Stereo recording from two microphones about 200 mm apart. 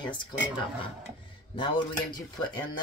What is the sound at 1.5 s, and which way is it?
Speech, 25° left (ahead or behind).